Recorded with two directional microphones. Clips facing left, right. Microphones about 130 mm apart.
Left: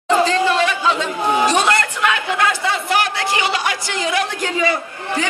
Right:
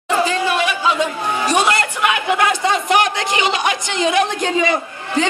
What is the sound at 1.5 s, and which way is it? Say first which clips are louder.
A man's voice: even; 15° right (ahead or behind).